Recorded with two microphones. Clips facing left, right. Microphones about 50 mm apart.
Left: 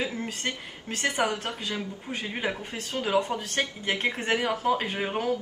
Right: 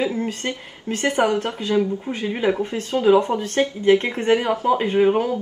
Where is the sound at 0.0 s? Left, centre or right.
Right.